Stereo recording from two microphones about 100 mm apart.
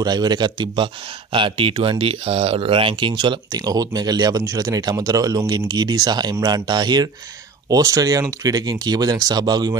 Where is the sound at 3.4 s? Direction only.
40° right (ahead or behind).